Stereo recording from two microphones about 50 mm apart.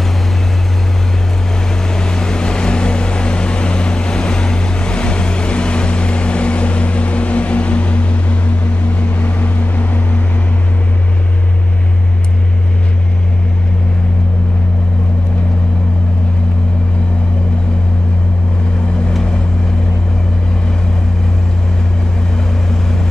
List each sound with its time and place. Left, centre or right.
2.0 s vehicle: centre; by 10.2 s left